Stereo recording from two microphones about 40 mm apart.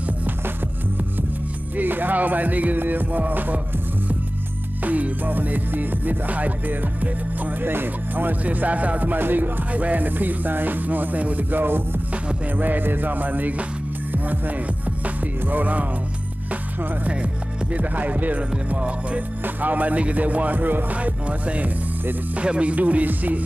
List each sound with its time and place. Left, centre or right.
1.8 s music: right
4.8 s music: right
7.6 s music: right
9.7 s music: right
11.5 s music: right
12.5 s music: right
17.0 s music: right
17.7 s music: right